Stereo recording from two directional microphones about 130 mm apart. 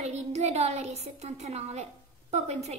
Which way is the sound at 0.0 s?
60° right (ahead or behind).